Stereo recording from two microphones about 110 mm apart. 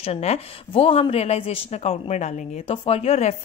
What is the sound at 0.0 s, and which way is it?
A woman's voice, 75° left (ahead or behind).